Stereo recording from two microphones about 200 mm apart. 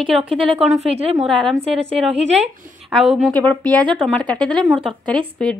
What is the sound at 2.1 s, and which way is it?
Speech, 35° right (ahead or behind).